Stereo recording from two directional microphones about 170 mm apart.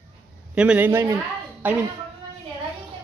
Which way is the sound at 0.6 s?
10° right (ahead or behind).